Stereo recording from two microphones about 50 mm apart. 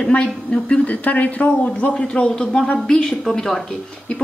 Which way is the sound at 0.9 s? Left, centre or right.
Left.